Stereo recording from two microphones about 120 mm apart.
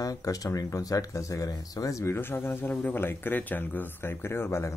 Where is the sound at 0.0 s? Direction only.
30° left (ahead or behind).